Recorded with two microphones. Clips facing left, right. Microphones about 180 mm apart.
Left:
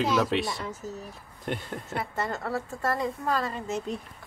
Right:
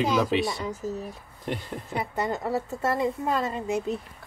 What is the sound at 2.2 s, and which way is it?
Speech, 15° right (ahead or behind).